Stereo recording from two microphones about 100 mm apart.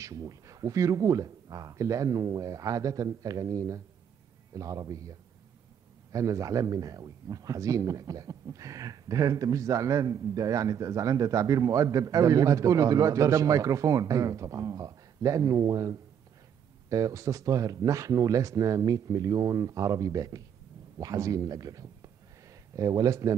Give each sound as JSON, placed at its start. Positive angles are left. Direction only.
{"t": 0.0, "sound": "a man's voice", "side_deg": -35}
{"t": 6.1, "sound": "a man's voice", "side_deg": -35}